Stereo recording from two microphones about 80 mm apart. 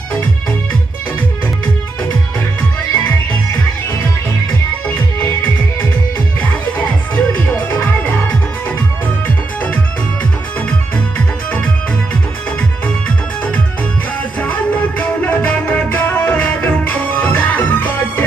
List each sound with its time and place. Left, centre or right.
6.4 s music: centre
11.1 s music: centre
14.4 s music: centre